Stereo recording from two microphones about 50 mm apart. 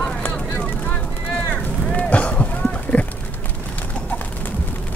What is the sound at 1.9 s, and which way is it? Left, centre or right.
Run, left.